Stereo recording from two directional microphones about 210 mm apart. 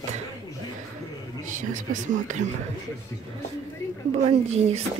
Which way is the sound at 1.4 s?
35° right (ahead or behind).